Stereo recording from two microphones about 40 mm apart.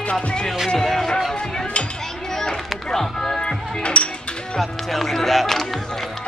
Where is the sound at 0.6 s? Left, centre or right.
Centre.